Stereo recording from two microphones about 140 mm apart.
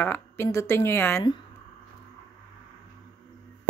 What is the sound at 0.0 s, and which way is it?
A woman's voice, 15° left (ahead or behind).